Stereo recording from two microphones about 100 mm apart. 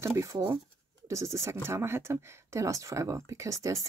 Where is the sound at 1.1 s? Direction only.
30° right (ahead or behind).